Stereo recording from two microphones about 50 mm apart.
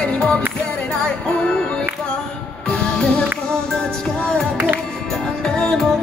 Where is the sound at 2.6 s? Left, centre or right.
Centre.